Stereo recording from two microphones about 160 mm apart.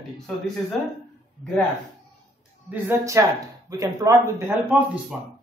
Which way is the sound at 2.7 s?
15° right (ahead or behind).